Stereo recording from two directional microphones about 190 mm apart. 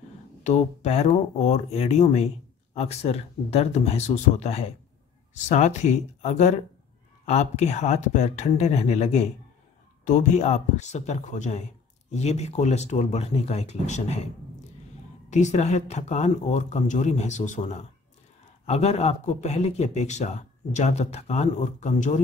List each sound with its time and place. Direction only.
0.4 s speech: 35° left (ahead or behind)